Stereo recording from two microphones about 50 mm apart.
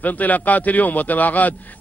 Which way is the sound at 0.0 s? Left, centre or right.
Left.